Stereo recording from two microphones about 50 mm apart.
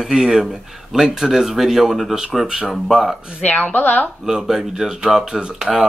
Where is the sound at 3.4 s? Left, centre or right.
Left.